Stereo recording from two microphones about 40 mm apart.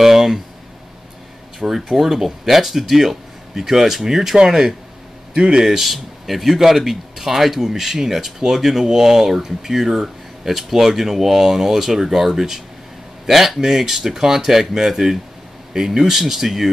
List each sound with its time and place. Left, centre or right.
0.0 s a sound: centre
1.9 s speech: centre
5.7 s speech: centre